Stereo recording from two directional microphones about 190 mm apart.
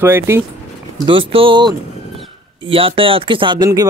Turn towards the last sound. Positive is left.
turn(degrees=-25)  # may be behind; listen again after turning